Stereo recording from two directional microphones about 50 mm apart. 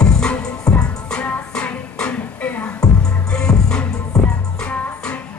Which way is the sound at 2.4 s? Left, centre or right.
Left.